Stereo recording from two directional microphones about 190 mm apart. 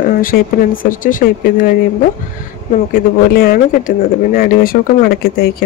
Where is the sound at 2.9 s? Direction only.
50° left (ahead or behind).